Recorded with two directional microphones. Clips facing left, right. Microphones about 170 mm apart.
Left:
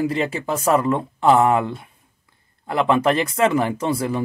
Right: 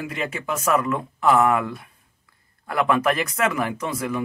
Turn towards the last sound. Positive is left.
turn(degrees=30)  # may be behind; listen again after turning